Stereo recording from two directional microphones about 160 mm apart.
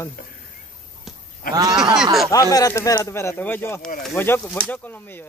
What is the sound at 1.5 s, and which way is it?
Speech, 65° left (ahead or behind).